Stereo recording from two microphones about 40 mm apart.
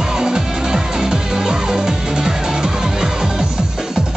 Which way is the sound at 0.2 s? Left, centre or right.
Centre.